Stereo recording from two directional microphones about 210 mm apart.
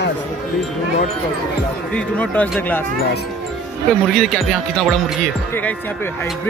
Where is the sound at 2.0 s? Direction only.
5° left (ahead or behind).